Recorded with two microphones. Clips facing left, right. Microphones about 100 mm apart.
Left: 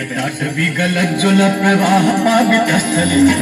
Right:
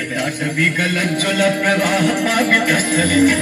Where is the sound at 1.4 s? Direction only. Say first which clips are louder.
Left 2 dB; 20° left (ahead or behind).